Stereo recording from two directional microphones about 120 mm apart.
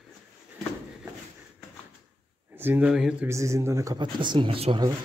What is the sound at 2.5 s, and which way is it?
Speech, 15° right (ahead or behind).